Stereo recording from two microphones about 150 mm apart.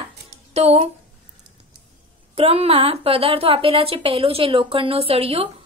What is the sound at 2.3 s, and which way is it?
A woman's voice, 40° right (ahead or behind).